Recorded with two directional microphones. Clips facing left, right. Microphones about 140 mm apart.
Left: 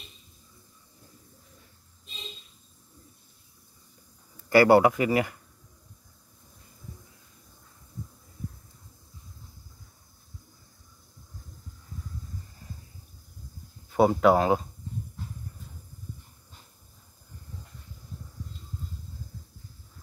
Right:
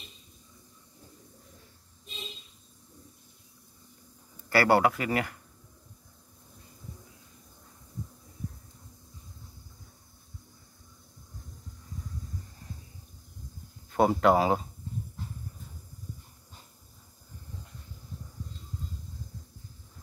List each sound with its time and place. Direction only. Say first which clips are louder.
4.5 s speech: left 5 dB; 15° left (ahead or behind)
13.9 s speech: left 2 dB; centre (ahead or behind)